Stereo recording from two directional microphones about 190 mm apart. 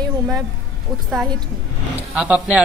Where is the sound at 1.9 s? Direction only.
5° right (ahead or behind).